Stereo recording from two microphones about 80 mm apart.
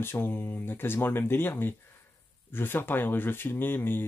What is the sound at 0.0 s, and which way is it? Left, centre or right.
Speech, left.